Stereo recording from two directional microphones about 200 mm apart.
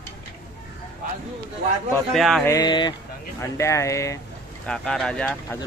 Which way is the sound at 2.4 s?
20° left (ahead or behind).